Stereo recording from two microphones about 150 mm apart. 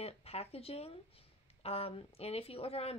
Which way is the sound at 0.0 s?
45° left (ahead or behind).